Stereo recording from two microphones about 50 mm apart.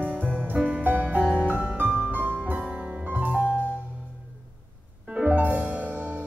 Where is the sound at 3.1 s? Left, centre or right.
Right.